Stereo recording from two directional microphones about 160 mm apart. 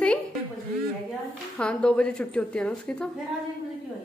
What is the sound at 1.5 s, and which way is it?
Speech, 5° left (ahead or behind).